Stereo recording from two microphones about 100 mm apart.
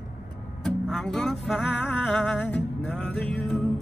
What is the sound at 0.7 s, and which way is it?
Music, 5° left (ahead or behind).